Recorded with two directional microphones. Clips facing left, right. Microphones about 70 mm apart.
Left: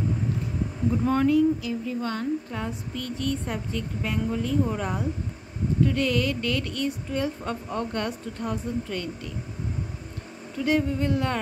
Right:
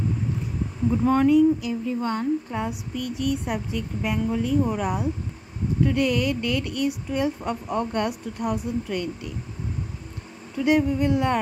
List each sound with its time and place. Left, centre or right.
1.0 s speech: centre
1.7 s a woman's voice: right
10.6 s speech: centre